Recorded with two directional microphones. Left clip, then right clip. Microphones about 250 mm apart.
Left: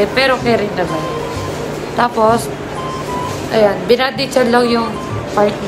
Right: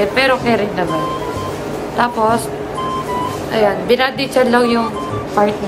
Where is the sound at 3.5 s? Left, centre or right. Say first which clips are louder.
Left 2 dB; centre.